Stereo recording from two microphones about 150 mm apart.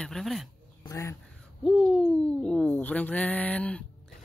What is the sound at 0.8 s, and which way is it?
Speech, 20° left (ahead or behind).